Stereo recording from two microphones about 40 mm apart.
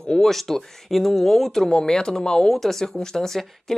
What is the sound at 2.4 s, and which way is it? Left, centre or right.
Speech, centre.